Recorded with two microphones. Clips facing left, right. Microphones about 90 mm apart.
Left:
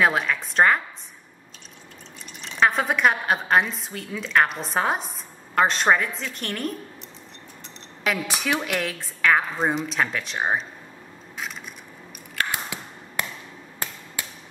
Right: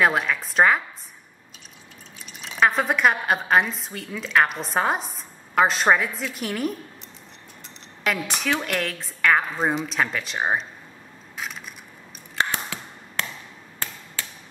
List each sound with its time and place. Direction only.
0.0 s a woman's voice: centre (ahead or behind)
2.4 s a woman's voice: centre (ahead or behind)
8.0 s a woman's voice: centre (ahead or behind)
12.4 s tap: 15° left (ahead or behind)
14.2 s hammer: 15° left (ahead or behind)